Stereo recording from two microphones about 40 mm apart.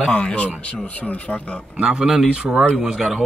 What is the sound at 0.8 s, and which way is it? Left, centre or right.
Speech, left.